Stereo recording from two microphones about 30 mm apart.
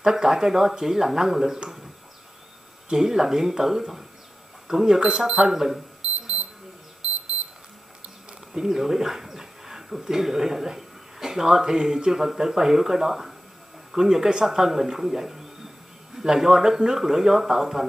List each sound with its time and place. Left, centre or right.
0.0 s speech: centre
2.9 s speech: centre
5.5 s speech: centre
8.3 s speech: centre